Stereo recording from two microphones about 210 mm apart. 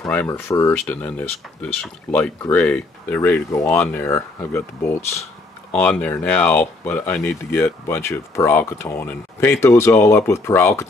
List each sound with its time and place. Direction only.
0.0 s speech: 10° left (ahead or behind)